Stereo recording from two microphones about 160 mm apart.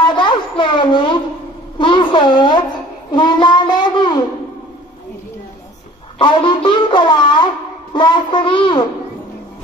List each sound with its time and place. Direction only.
0.0 s a sound: 30° left (ahead or behind)
3.1 s child singing: 30° left (ahead or behind)
6.1 s speech: 30° left (ahead or behind)